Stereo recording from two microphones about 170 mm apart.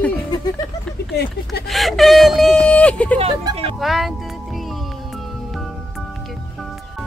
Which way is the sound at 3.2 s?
35° right (ahead or behind).